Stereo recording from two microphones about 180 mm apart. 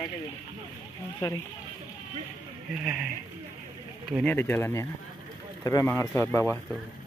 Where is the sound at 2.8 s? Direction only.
5° right (ahead or behind).